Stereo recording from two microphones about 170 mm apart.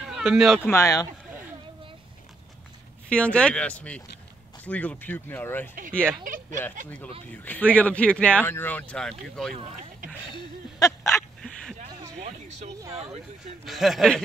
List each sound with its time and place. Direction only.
0.1 s speech: 5° right (ahead or behind)
0.7 s speech: 20° left (ahead or behind)
3.1 s speech: 5° left (ahead or behind)
6.2 s speech: 50° right (ahead or behind)
7.2 s speech: 10° left (ahead or behind)
10.3 s a sound: 20° left (ahead or behind)
12.2 s a sound: 40° right (ahead or behind)
13.7 s speech: centre (ahead or behind)